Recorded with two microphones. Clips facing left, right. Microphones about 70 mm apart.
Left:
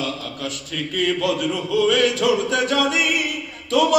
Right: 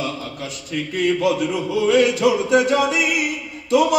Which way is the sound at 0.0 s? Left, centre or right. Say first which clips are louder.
Even; left.